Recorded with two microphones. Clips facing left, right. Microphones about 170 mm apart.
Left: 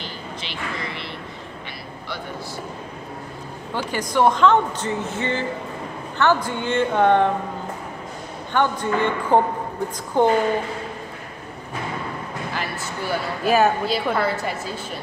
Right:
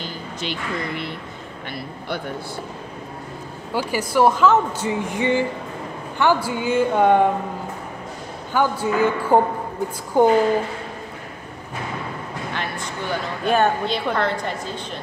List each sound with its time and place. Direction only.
0.0 s a sound: 45° right (ahead or behind)
3.7 s speech: 10° right (ahead or behind)
8.5 s speech: 5° right (ahead or behind)
12.5 s speech: 5° left (ahead or behind)